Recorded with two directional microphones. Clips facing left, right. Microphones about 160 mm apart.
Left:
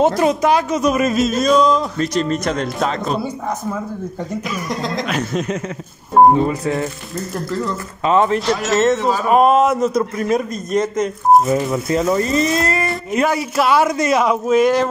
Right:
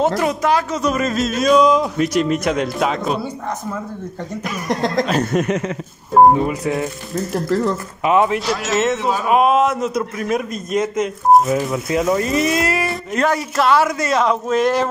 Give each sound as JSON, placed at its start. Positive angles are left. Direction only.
{"t": 0.0, "sound": "a woman's voice", "side_deg": 20}
{"t": 1.4, "sound": "a man's voice", "side_deg": -5}
{"t": 4.6, "sound": "a sound", "side_deg": -50}
{"t": 5.2, "sound": "speech", "side_deg": -60}
{"t": 6.1, "sound": "a man's voice", "side_deg": -10}
{"t": 8.0, "sound": "speech", "side_deg": -10}
{"t": 13.1, "sound": "a woman's voice", "side_deg": 10}